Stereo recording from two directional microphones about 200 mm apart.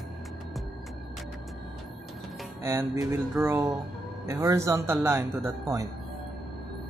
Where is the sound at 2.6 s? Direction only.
15° right (ahead or behind).